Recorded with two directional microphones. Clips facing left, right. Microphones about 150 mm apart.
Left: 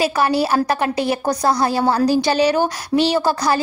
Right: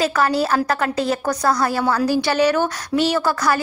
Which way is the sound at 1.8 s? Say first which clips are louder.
Left 2 dB; 35° left (ahead or behind).